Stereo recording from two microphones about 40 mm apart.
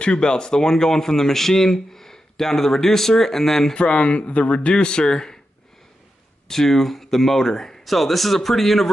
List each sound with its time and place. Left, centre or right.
0.0 s speech: left
3.7 s speech: left
6.4 s a man's voice: centre